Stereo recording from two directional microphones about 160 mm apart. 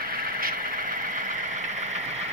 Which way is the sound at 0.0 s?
65° right (ahead or behind).